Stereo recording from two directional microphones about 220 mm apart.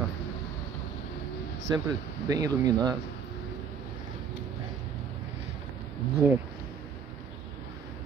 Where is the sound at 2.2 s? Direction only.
15° right (ahead or behind).